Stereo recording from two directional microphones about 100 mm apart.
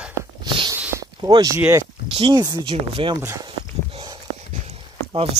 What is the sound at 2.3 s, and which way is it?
Speech, 40° right (ahead or behind).